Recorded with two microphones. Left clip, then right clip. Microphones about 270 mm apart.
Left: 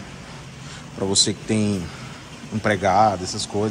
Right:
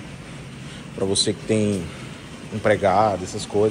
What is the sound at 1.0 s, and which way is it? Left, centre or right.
Speech, centre.